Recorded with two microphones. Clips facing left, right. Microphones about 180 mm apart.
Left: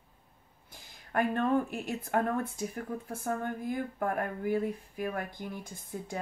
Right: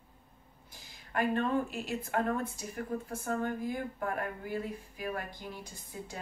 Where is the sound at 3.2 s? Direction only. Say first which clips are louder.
Even; 55° left (ahead or behind).